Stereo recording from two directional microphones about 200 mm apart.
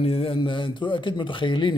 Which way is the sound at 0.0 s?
30° left (ahead or behind).